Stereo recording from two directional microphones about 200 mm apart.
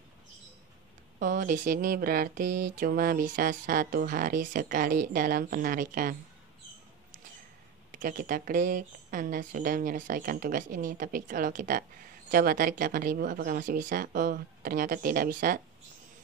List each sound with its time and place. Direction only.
1.2 s speech: 40° right (ahead or behind)
7.9 s speech: 40° right (ahead or behind)